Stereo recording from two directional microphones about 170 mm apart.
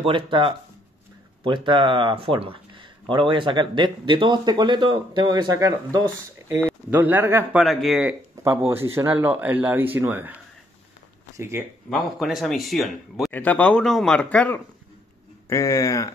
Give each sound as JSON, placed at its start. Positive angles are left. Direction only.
{"t": 0.0, "sound": "speech", "side_deg": -30}
{"t": 7.6, "sound": "speech", "side_deg": 0}
{"t": 8.5, "sound": "speech", "side_deg": -15}
{"t": 11.3, "sound": "speech", "side_deg": -15}
{"t": 11.9, "sound": "speech", "side_deg": 0}